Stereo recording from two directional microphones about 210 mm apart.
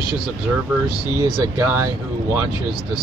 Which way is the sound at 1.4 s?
15° right (ahead or behind).